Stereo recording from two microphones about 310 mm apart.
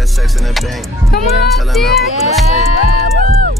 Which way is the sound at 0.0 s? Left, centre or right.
Centre.